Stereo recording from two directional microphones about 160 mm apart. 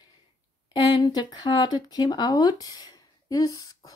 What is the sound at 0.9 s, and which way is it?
Speech, 25° left (ahead or behind).